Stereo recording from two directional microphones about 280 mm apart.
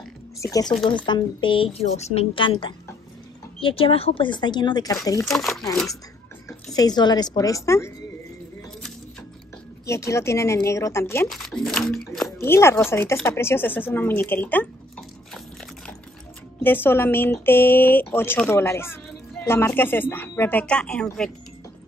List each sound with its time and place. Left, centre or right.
0.4 s speech: centre
5.3 s speech: centre
5.6 s speech: centre
9.8 s speech: centre
16.6 s speech: centre